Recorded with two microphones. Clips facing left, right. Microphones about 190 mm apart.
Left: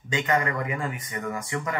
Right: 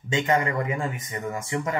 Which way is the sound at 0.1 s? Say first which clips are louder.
Right 2 dB; 25° right (ahead or behind).